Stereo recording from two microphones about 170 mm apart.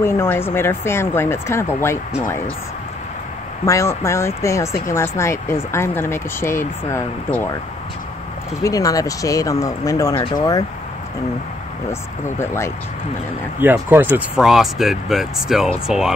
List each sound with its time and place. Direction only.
0.0 s speech: 15° left (ahead or behind)
3.6 s speech: 15° left (ahead or behind)
8.6 s speech: 20° left (ahead or behind)
11.9 s speech: 15° left (ahead or behind)
13.6 s speech: 10° right (ahead or behind)